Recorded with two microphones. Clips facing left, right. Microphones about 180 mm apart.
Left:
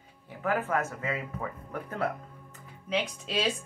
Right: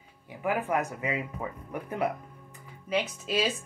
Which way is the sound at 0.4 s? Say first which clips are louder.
Right 1 dB; 15° right (ahead or behind).